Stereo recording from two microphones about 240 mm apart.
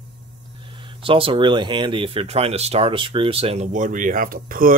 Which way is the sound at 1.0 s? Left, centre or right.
Right.